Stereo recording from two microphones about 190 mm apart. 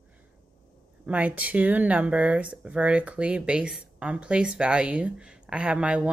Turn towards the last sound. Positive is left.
turn(degrees=-5)  # may be behind; listen again after turning